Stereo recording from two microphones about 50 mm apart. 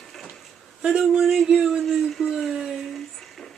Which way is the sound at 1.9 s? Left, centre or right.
Centre.